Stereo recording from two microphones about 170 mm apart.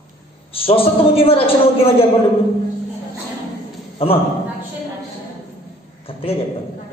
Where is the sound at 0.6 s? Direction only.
35° left (ahead or behind).